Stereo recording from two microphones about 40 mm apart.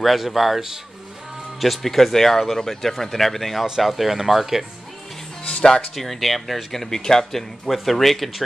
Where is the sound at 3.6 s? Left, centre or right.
Centre.